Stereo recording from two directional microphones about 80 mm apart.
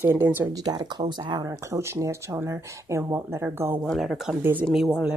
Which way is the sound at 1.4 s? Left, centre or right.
Right.